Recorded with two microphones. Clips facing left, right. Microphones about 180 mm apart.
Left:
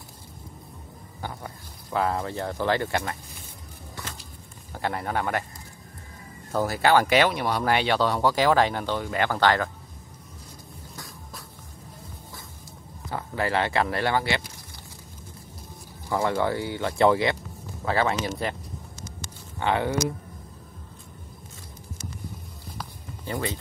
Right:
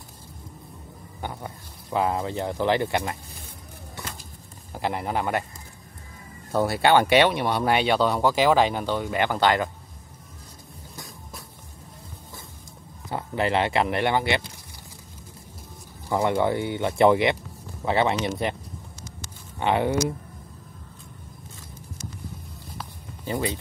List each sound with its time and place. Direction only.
1.2 s speech: 15° right (ahead or behind)
4.7 s speech: 10° right (ahead or behind)
6.6 s speech: 25° right (ahead or behind)
13.1 s speech: 20° right (ahead or behind)
16.1 s speech: 20° right (ahead or behind)
19.6 s speech: 20° right (ahead or behind)
23.2 s speech: 20° right (ahead or behind)